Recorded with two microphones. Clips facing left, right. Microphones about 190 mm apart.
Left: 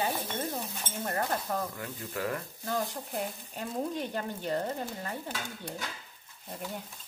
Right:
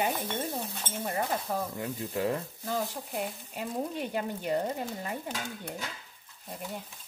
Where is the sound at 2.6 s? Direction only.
Centre (ahead or behind).